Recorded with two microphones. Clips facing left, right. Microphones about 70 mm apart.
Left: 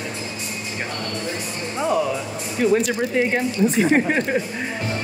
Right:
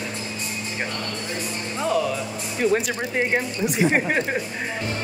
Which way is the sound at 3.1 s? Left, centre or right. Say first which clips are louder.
Left 1 dB; centre.